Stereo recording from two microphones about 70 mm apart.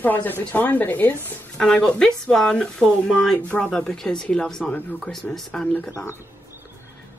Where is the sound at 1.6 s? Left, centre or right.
Centre.